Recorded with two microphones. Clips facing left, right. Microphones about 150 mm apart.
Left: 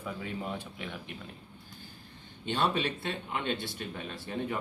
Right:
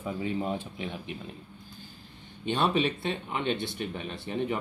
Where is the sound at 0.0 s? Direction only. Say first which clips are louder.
Right 6 dB; 25° right (ahead or behind).